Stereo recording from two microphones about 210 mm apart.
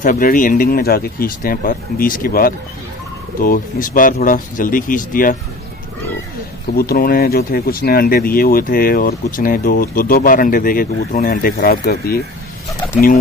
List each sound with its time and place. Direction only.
0.0 s speech: 40° left (ahead or behind)
6.8 s speech: 45° left (ahead or behind)